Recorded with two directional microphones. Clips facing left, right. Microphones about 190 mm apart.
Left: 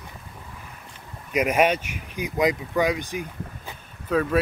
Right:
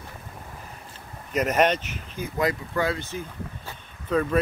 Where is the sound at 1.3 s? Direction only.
10° left (ahead or behind).